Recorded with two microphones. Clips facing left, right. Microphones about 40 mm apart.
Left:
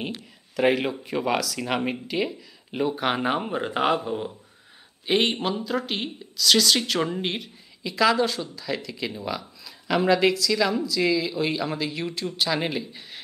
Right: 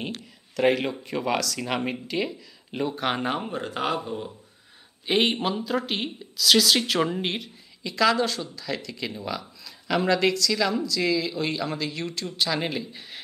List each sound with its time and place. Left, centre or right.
0.0 s speech: centre
5.0 s speech: centre